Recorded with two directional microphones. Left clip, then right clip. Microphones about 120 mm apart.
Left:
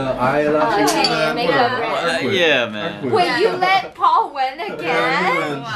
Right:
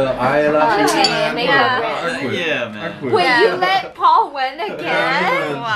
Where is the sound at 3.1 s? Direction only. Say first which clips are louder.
Right 3 dB; 15° right (ahead or behind).